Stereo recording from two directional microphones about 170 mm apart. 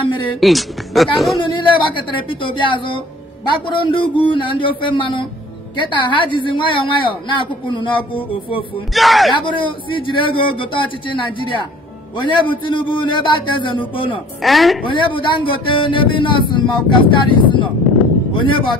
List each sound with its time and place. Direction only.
0.0 s speech: 30° left (ahead or behind)
0.4 s speech: centre (ahead or behind)
1.4 s speech: 30° left (ahead or behind)
8.9 s speech: centre (ahead or behind)
9.3 s speech: 30° left (ahead or behind)
14.4 s speech: centre (ahead or behind)
14.9 s speech: 30° left (ahead or behind)